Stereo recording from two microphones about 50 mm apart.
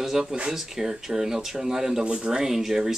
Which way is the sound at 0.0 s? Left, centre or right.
Centre.